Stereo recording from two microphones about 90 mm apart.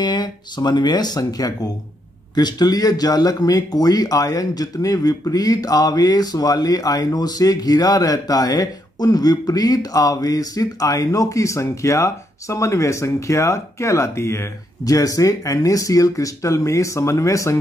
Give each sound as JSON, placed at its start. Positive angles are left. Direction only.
{"t": 0.0, "sound": "speech", "side_deg": 55}